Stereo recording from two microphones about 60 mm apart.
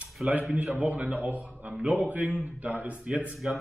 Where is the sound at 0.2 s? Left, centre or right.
Centre.